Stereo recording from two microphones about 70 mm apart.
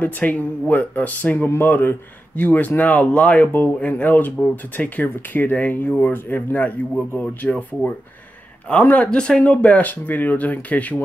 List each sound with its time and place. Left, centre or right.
0.0 s speech: left